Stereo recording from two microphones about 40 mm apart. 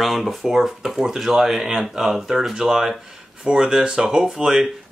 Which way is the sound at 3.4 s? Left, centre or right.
Right.